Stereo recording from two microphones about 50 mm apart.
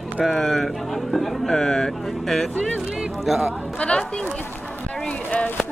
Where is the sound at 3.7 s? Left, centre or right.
Left.